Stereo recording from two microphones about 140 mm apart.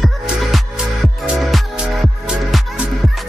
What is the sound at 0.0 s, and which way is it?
Music, centre (ahead or behind).